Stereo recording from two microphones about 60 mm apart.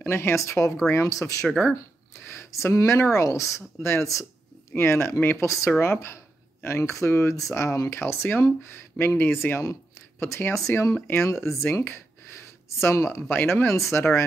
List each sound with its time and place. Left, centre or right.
0.0 s a woman's voice: left
1.1 s a woman's voice: left
2.2 s a woman's voice: left
4.7 s a woman's voice: left
7.9 s speech: left
9.7 s a sound: left
10.7 s speech: left
11.7 s speech: left
12.6 s speech: left
13.3 s speech: left
13.7 s speech: left